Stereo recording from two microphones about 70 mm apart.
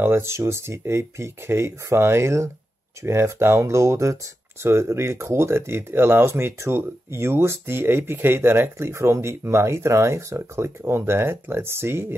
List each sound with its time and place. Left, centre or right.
0.0 s speech: right